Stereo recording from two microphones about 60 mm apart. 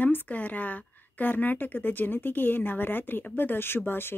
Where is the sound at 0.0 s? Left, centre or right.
Left.